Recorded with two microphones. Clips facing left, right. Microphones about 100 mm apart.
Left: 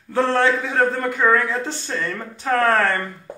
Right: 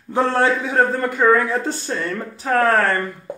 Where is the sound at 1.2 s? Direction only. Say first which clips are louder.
Right 3 dB; 10° right (ahead or behind).